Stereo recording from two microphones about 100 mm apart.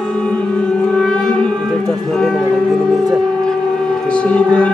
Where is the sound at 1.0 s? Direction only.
5° left (ahead or behind).